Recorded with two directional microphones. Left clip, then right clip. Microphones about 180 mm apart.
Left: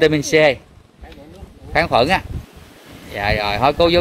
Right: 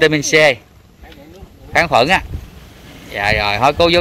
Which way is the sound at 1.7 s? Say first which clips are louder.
Right 3 dB; 5° left (ahead or behind).